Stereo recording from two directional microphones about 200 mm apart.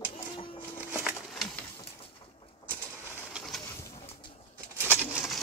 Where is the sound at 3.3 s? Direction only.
Centre (ahead or behind).